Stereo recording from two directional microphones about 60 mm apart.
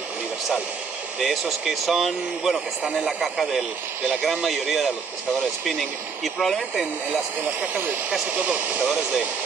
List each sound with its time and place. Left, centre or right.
1.2 s speech: centre
8.3 s speech: right